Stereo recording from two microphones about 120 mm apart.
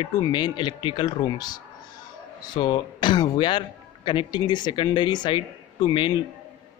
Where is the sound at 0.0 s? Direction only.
40° left (ahead or behind).